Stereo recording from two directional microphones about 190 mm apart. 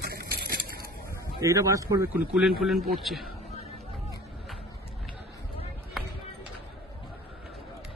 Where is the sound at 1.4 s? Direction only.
15° right (ahead or behind).